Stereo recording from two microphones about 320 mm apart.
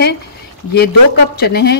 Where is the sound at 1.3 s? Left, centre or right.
Left.